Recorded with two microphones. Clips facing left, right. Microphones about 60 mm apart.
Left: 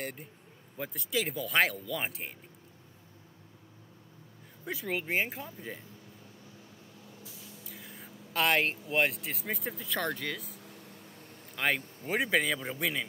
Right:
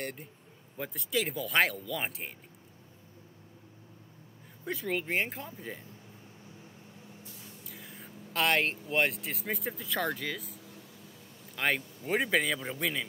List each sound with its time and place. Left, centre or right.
0.0 s a man's voice: centre
4.6 s speech: centre
7.6 s speech: centre
10.4 s air conditioning: left
11.5 s a man's voice: centre